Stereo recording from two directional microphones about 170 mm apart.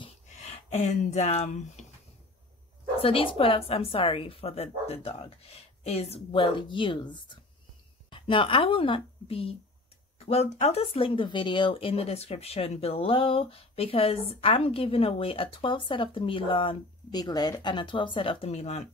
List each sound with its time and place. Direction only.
0.4 s speech: 40° left (ahead or behind)
3.0 s speech: 35° left (ahead or behind)